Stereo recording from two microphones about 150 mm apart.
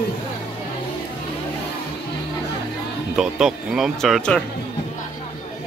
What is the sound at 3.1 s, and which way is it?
A man's voice, 5° right (ahead or behind).